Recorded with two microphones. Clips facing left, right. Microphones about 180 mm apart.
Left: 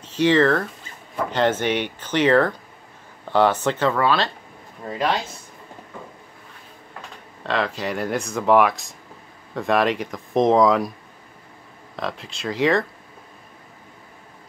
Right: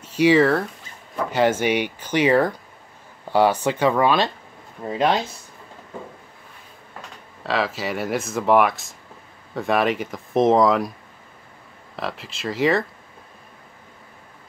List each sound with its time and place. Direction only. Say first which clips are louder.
0.0 s speech: right 1 dB; 10° right (ahead or behind)
7.4 s speech: even; 5° right (ahead or behind)
12.0 s speech: even; centre (ahead or behind)